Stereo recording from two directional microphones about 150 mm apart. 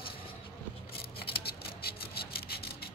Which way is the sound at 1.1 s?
90° left.